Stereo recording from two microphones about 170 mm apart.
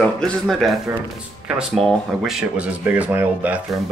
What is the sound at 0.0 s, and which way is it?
Speech, 5° left (ahead or behind).